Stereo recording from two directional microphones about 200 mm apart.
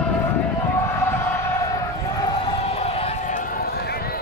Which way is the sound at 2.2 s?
25° left (ahead or behind).